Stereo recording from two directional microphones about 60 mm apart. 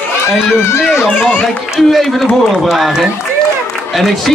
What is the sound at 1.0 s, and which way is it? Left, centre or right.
Speech, left.